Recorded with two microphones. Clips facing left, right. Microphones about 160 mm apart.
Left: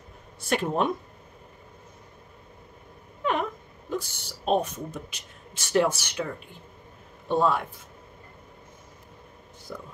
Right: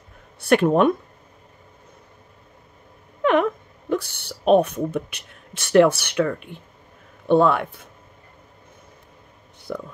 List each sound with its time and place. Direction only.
0.4 s speech: 65° right (ahead or behind)
3.2 s a sound: 70° right (ahead or behind)
3.9 s speech: 65° right (ahead or behind)
9.7 s speech: 75° right (ahead or behind)